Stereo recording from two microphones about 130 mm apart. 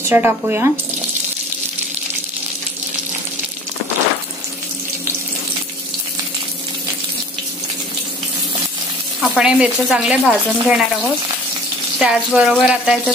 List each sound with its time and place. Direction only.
0.1 s speech: 15° right (ahead or behind)
9.2 s speech: 5° right (ahead or behind)
12.0 s speech: 5° right (ahead or behind)